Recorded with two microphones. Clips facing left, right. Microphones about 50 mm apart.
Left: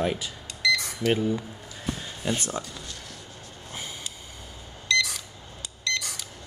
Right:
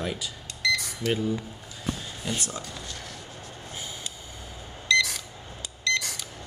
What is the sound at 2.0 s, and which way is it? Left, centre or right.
Speech, left.